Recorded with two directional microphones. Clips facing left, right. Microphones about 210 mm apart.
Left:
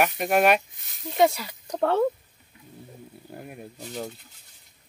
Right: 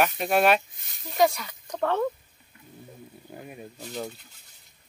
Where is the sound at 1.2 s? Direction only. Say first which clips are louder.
Left 1 dB; 25° left (ahead or behind).